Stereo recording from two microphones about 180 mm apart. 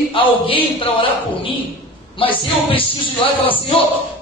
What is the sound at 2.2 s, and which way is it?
A woman's voice, 30° left (ahead or behind).